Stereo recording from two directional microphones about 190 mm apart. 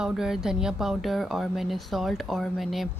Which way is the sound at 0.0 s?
5° right (ahead or behind).